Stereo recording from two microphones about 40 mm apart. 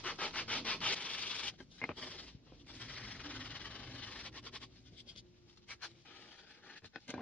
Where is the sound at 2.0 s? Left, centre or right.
Left.